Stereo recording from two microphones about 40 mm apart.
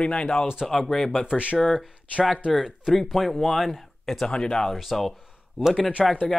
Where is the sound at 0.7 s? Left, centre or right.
Centre.